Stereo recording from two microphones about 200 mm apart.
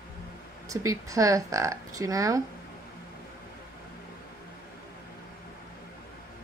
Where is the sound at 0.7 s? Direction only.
15° right (ahead or behind).